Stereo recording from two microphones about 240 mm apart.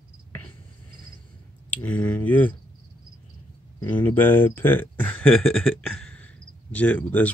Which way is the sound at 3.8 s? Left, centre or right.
Centre.